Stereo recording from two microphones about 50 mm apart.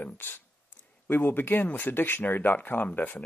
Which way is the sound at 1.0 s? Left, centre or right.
Left.